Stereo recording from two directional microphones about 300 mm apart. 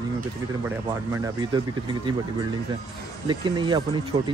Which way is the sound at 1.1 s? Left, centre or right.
Centre.